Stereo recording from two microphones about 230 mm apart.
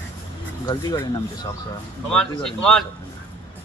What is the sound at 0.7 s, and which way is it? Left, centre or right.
Speech, centre.